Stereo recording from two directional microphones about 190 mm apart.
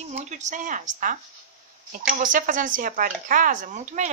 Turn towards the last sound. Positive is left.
turn(degrees=-40)  # may be behind; listen again after turning